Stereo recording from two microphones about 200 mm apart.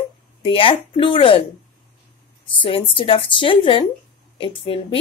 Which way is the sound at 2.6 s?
25° left (ahead or behind).